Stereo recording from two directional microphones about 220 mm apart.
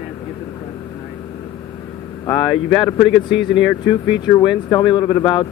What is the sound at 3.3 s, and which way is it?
Speech, 55° left (ahead or behind).